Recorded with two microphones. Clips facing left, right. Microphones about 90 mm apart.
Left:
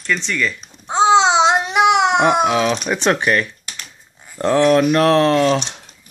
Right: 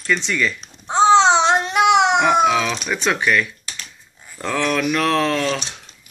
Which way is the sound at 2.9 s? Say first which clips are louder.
Left 3 dB; 20° left (ahead or behind).